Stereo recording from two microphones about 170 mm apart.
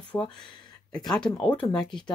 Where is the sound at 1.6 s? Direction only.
25° left (ahead or behind).